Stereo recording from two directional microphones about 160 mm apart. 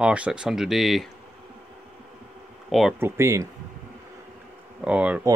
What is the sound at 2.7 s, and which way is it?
Speech, centre (ahead or behind).